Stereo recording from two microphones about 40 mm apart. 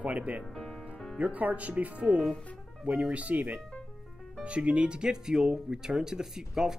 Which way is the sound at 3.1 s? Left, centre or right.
Right.